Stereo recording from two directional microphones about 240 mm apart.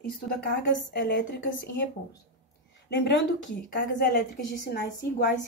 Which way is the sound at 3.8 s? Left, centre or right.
Left.